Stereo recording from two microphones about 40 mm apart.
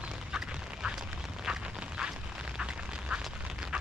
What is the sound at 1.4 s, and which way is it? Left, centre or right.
Duck, right.